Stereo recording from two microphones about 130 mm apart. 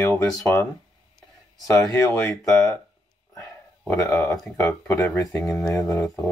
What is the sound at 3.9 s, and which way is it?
Speech, 25° left (ahead or behind).